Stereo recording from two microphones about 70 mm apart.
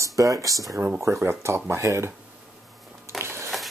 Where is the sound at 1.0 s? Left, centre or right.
Right.